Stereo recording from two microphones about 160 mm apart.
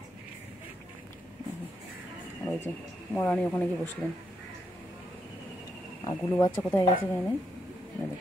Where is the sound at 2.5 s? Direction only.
10° left (ahead or behind).